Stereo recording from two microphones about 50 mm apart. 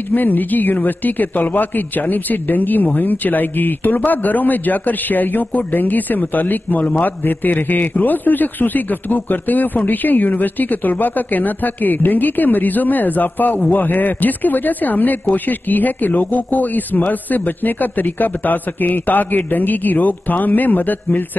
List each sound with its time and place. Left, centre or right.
0.1 s speech: left